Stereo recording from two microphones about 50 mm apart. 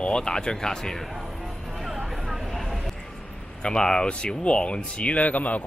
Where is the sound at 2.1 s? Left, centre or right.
Centre.